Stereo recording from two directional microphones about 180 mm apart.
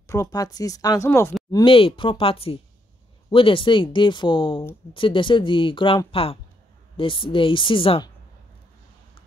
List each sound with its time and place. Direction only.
0.0 s speech: 15° left (ahead or behind)
1.5 s speech: 30° left (ahead or behind)